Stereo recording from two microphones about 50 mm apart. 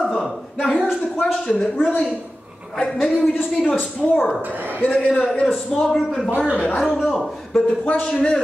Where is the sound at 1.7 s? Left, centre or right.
Left.